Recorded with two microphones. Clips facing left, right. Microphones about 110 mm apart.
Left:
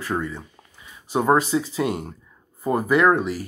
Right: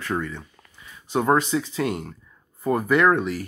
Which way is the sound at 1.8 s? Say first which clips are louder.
Left 1 dB; 20° left (ahead or behind).